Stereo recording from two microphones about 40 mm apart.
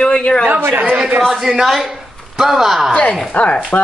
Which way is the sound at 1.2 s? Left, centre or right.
Centre.